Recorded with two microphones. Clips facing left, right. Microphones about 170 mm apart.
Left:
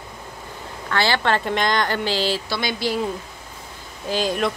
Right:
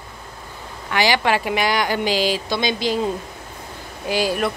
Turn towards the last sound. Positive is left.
turn(degrees=-5)  # may be behind; listen again after turning